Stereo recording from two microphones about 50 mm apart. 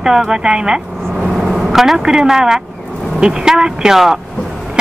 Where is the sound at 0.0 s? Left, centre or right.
Centre.